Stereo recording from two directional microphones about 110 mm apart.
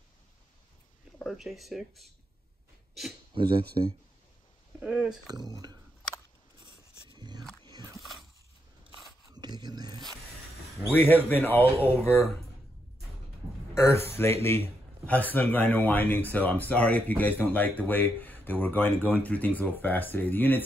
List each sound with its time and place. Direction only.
1.2 s speech: centre (ahead or behind)
3.3 s speech: 50° right (ahead or behind)
4.7 s speech: 10° right (ahead or behind)
5.2 s speech: 35° right (ahead or behind)
6.6 s a sound: 45° right (ahead or behind)
8.0 s a sound: centre (ahead or behind)
9.3 s a sound: 40° right (ahead or behind)
10.9 s a man's voice: 15° left (ahead or behind)
13.7 s a man's voice: 25° left (ahead or behind)